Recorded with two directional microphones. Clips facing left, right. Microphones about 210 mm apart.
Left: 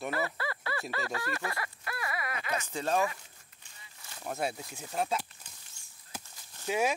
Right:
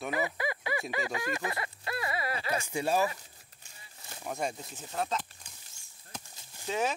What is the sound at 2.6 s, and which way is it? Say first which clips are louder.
Speech: right 1 dB; 10° right (ahead or behind).